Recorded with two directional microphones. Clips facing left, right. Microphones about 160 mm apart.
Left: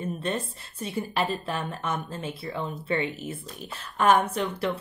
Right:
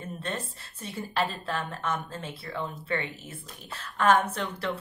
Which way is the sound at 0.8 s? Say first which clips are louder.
Left 2 dB; 15° left (ahead or behind).